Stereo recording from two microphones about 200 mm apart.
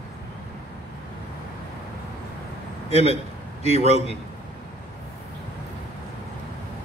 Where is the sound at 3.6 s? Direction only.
35° right (ahead or behind).